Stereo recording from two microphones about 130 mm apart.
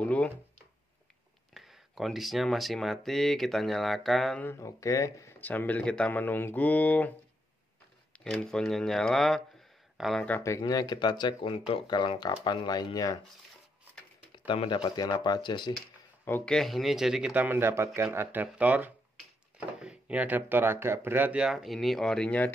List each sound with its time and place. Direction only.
0.0 s speech: 10° left (ahead or behind)
1.5 s speech: centre (ahead or behind)
4.4 s speech: 20° left (ahead or behind)
8.2 s speech: 5° left (ahead or behind)
10.6 s speech: 30° left (ahead or behind)
14.5 s speech: 40° left (ahead or behind)
16.4 s speech: 5° left (ahead or behind)